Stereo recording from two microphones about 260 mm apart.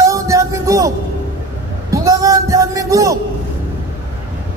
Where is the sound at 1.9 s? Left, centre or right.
Centre.